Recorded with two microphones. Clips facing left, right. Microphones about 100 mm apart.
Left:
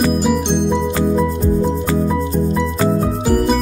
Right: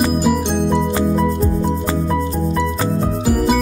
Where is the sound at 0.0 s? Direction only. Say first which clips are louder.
Even; 5° right (ahead or behind).